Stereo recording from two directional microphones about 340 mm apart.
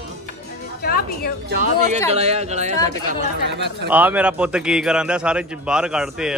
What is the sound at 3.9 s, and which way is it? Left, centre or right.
A man's voice, centre.